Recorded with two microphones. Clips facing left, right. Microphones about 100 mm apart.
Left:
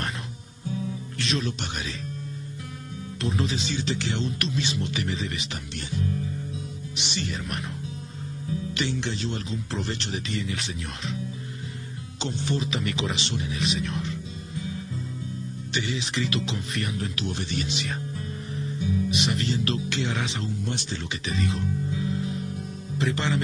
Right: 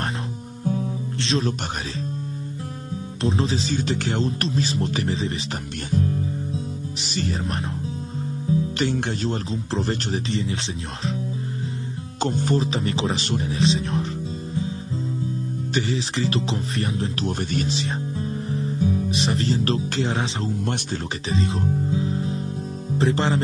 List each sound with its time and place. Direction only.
0.7 s music: 40° right (ahead or behind)
3.2 s speech: 30° right (ahead or behind)
5.9 s music: 35° right (ahead or behind)
8.7 s speech: 50° right (ahead or behind); by 11.1 s 35° right (ahead or behind)
12.2 s music: 45° right (ahead or behind)
15.7 s speech: 35° right (ahead or behind)
17.3 s speech: 45° right (ahead or behind)
21.3 s guitar: 30° right (ahead or behind)
22.9 s speech: 35° right (ahead or behind)